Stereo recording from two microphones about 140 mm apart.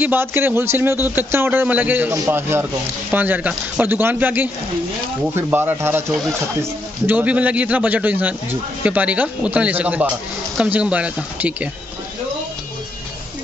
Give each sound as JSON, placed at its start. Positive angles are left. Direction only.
{"t": 0.0, "sound": "a man's voice", "side_deg": -15}